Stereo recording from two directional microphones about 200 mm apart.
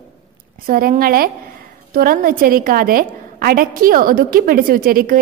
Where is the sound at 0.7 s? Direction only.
45° right (ahead or behind).